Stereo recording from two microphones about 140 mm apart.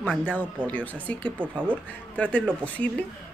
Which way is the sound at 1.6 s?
10° left (ahead or behind).